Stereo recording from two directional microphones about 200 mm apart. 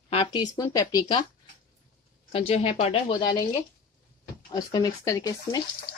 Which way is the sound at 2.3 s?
30° left (ahead or behind).